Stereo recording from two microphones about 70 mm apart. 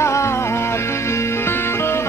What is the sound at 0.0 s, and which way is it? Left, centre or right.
Music, left.